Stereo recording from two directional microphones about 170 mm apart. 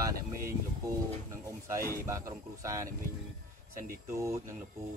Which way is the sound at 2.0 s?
20° right (ahead or behind).